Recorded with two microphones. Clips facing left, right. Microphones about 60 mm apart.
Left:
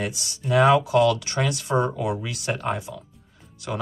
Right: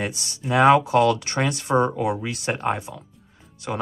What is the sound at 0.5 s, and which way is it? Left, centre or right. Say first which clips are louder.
Speech: right 2 dB; right.